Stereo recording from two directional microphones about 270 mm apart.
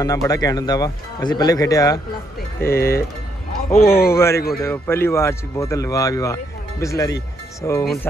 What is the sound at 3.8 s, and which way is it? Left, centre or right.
Speech, left.